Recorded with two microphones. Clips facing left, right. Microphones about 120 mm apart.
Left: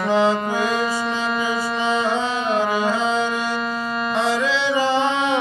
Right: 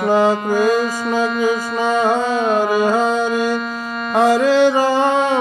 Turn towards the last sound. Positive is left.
turn(degrees=-45)  # may be behind; listen again after turning